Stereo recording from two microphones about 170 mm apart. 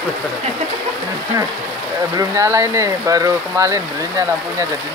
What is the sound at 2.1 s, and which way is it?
Speech, 20° right (ahead or behind).